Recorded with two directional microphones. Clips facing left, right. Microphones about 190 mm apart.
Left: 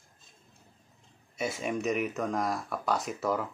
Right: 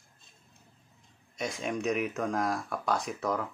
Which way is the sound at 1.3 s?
5° left (ahead or behind).